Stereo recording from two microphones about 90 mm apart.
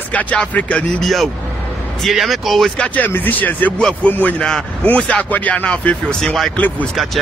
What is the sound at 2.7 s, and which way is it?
Speech, 20° left (ahead or behind).